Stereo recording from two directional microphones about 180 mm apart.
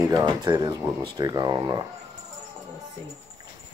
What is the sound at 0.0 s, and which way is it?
Speech, 25° right (ahead or behind).